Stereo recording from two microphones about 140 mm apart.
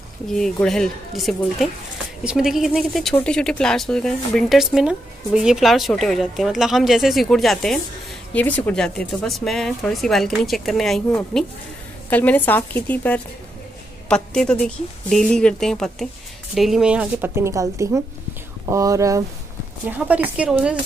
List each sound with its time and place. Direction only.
0.3 s a woman's voice: 5° left (ahead or behind); by 19.2 s 25° right (ahead or behind)
19.9 s a woman's voice: 10° right (ahead or behind)